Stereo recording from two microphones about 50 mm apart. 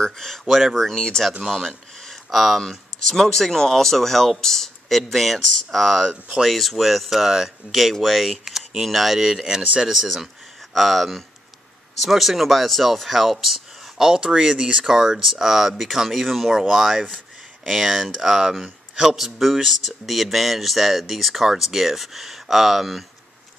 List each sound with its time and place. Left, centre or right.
0.0 s speech: centre
2.0 s a sound: centre
2.6 s speech: centre
7.9 s speech: centre
9.8 s speech: centre